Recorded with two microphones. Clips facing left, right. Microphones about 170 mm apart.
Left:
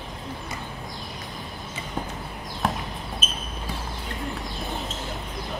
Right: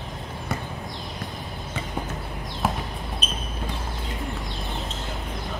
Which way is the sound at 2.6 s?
5° right (ahead or behind).